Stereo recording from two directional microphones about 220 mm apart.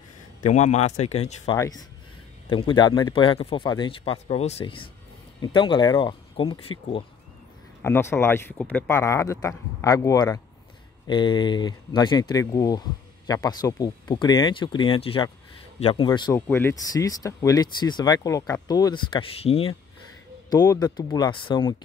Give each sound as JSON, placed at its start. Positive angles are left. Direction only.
{"t": 0.4, "sound": "speech", "side_deg": 35}
{"t": 1.6, "sound": "a man's voice", "side_deg": 15}
{"t": 7.8, "sound": "a man's voice", "side_deg": 10}